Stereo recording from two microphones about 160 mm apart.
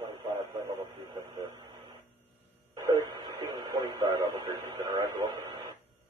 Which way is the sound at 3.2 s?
25° right (ahead or behind).